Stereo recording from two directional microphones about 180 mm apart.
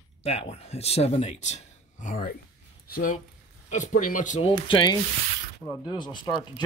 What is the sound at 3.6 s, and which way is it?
Speech, 40° left (ahead or behind).